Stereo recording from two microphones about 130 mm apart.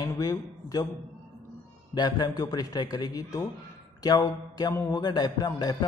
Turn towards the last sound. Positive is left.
turn(degrees=30)  # may be behind; listen again after turning